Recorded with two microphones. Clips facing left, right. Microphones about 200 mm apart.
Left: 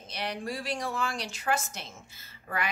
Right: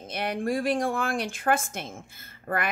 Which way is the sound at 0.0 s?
50° right (ahead or behind).